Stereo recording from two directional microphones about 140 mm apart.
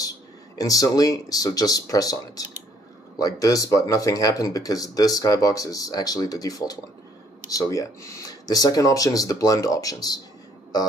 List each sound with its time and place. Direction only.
0.6 s speech: 25° left (ahead or behind)